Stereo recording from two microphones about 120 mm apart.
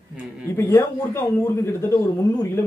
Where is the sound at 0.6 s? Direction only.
25° left (ahead or behind).